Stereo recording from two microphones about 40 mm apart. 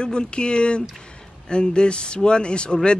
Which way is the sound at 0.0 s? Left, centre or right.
Left.